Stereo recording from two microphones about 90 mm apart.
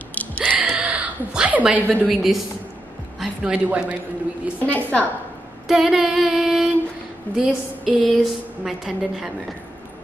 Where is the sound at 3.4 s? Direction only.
15° right (ahead or behind).